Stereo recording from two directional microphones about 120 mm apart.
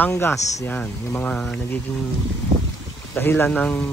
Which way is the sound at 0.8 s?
10° left (ahead or behind).